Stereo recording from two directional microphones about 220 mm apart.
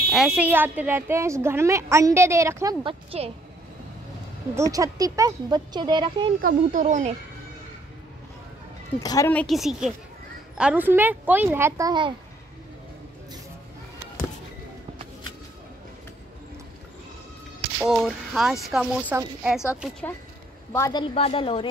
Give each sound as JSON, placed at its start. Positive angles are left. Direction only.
{"t": 0.1, "sound": "a woman's voice", "side_deg": -5}
{"t": 2.8, "sound": "a woman's voice", "side_deg": -25}
{"t": 4.6, "sound": "a woman's voice", "side_deg": -15}
{"t": 6.4, "sound": "speech", "side_deg": -35}
{"t": 9.0, "sound": "a woman's voice", "side_deg": 15}
{"t": 17.7, "sound": "a woman's voice", "side_deg": 0}
{"t": 20.7, "sound": "a woman's voice", "side_deg": 15}